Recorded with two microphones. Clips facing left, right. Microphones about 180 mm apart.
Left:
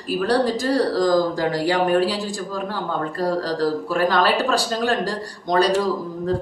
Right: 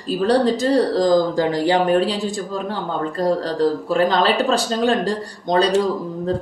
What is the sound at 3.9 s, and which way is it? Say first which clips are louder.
Speech: right 1 dB; 25° right (ahead or behind).